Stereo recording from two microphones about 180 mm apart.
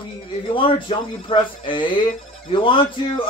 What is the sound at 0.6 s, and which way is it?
Speech, 30° left (ahead or behind).